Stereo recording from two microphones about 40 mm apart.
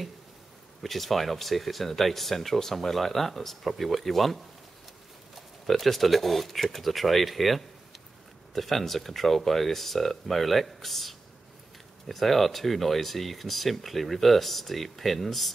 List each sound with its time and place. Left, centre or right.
0.8 s speech: centre